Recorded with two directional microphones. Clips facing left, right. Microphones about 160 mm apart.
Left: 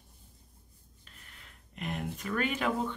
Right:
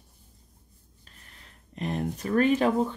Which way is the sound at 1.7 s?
35° right (ahead or behind).